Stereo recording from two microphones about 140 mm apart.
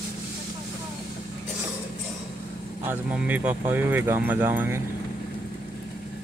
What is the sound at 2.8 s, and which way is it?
Speech, 10° right (ahead or behind).